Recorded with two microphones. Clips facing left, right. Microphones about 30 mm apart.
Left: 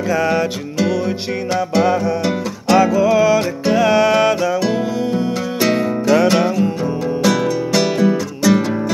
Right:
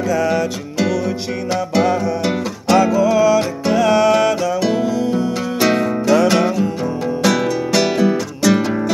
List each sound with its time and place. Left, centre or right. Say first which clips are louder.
0.1 s music: left 1 dB; left
1.5 s music: left 1 dB; centre
3.0 s music: even; centre
4.4 s music: even; centre